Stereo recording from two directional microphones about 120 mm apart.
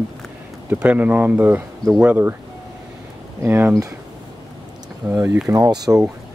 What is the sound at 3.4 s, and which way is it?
Speech, 20° right (ahead or behind).